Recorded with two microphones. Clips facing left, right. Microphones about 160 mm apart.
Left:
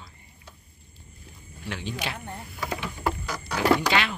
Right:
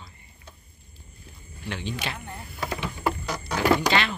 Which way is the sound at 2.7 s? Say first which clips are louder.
Right 1 dB; 20° right (ahead or behind).